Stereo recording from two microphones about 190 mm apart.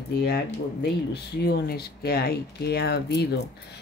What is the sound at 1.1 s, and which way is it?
Speech, 60° left (ahead or behind).